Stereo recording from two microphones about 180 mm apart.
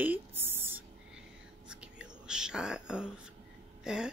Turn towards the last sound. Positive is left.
turn(degrees=-5)  # may be behind; listen again after turning